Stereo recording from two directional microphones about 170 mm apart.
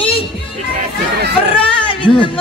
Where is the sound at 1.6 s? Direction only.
30° left (ahead or behind).